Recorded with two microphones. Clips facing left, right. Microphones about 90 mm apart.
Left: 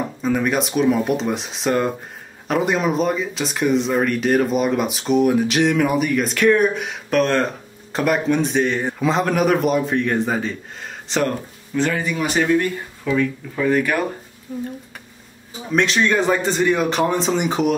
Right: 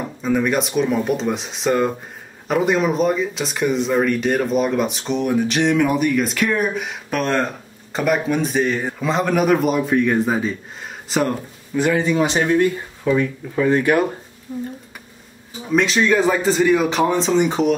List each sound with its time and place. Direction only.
0.2 s speech: centre (ahead or behind)
12.0 s speech: 25° right (ahead or behind)
15.7 s speech: centre (ahead or behind)